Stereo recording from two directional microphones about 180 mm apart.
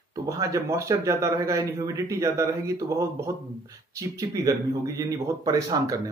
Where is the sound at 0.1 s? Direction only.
20° right (ahead or behind).